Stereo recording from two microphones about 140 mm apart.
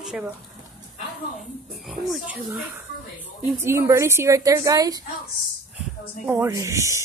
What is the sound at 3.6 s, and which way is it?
A woman's voice, 20° right (ahead or behind).